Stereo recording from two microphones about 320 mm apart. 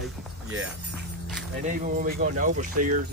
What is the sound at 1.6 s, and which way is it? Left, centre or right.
Speech, right.